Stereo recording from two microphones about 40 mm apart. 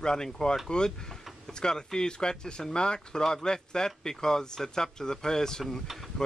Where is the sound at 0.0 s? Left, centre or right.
Centre.